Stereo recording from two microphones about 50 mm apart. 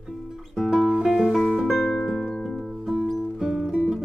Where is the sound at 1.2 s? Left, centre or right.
Centre.